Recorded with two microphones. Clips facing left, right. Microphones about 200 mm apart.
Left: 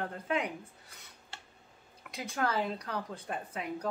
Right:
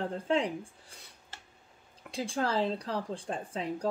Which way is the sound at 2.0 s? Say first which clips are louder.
Right 2 dB; 30° right (ahead or behind).